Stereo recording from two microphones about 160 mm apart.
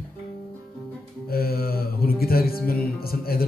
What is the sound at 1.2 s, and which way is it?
A man's voice, 70° left (ahead or behind).